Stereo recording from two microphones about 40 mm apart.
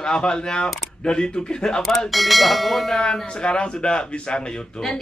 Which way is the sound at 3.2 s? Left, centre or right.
Left.